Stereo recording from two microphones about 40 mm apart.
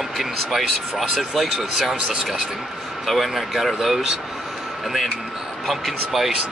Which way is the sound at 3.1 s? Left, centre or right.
Centre.